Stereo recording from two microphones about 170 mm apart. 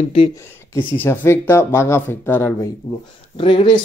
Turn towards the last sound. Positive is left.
turn(degrees=30)  # may be behind; listen again after turning